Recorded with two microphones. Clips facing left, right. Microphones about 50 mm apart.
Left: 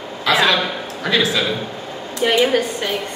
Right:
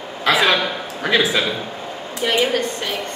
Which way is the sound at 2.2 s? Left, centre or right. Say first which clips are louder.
Left 3 dB; centre.